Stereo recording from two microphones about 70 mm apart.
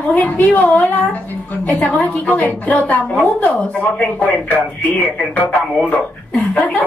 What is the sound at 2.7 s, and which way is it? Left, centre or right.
A woman's voice, left.